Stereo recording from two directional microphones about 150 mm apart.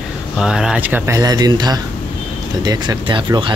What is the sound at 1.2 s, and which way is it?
Speech, 25° right (ahead or behind).